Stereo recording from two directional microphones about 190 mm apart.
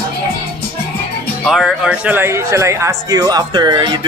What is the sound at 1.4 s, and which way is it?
Speech, centre (ahead or behind).